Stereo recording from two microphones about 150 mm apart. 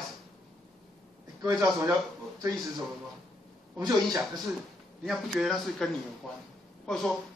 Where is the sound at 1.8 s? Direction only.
25° right (ahead or behind).